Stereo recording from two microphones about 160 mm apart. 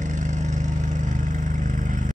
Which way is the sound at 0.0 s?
50° right (ahead or behind).